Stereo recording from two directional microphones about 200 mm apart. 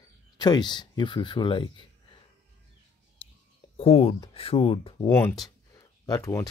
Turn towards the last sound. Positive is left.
turn(degrees=15)  # may be behind; listen again after turning